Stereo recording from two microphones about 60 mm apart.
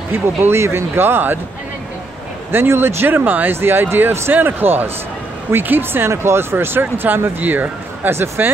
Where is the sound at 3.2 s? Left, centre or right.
Right.